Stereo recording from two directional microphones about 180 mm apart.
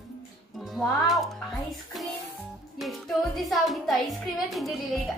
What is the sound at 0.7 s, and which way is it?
Speech, centre (ahead or behind).